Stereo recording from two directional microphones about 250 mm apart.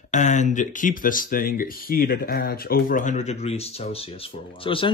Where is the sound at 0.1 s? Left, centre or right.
Left.